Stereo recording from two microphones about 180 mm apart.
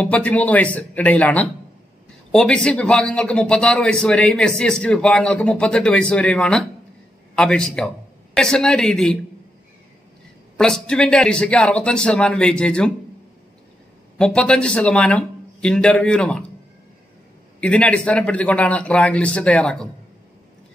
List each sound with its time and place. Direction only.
0.0 s a man's voice: 10° left (ahead or behind)
10.6 s speech: 5° left (ahead or behind)
14.1 s speech: 5° left (ahead or behind)
17.6 s a man's voice: 5° left (ahead or behind)